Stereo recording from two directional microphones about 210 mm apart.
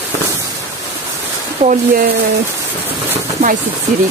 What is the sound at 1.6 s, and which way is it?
Speech, 45° right (ahead or behind).